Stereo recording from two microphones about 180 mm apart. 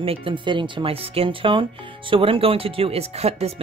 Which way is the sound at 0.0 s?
30° right (ahead or behind).